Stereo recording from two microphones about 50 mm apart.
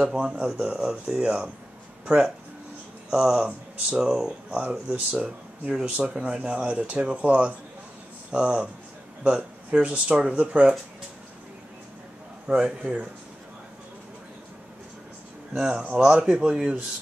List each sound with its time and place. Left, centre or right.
0.0 s speech: centre
4.6 s speech: right
12.4 s speech: centre
15.5 s speech: centre